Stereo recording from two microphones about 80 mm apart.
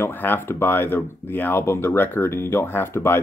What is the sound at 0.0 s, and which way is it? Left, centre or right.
Speech, left.